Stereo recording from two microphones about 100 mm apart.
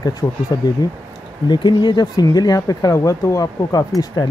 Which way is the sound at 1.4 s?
50° left (ahead or behind).